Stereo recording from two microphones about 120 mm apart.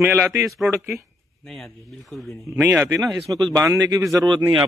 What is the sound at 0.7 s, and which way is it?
Speech, 20° right (ahead or behind).